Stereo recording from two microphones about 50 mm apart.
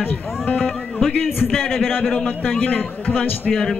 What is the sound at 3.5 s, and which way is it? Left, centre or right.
Speech, centre.